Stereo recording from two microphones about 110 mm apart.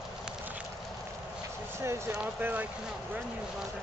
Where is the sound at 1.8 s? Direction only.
25° right (ahead or behind).